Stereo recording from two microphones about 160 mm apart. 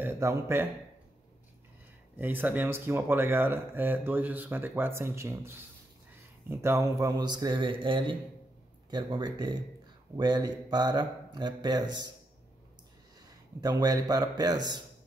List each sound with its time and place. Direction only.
0.0 s speech: 15° right (ahead or behind)
2.1 s speech: 10° right (ahead or behind); by 12.1 s 25° right (ahead or behind)
13.6 s speech: 25° right (ahead or behind)